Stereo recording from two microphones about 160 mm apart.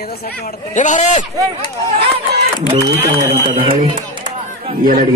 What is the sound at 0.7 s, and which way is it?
Speech, 50° left (ahead or behind).